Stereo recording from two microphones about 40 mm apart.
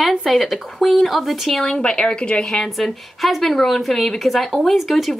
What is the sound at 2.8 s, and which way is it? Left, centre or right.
Speech, centre.